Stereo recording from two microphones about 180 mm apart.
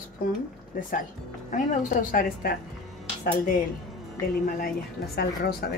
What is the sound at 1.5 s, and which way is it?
Speech, 45° left (ahead or behind).